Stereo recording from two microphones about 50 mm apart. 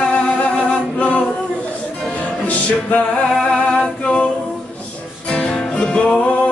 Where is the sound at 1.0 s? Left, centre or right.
Left.